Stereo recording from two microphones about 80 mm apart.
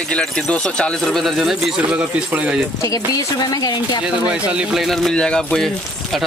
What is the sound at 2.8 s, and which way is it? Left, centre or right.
Speech, left.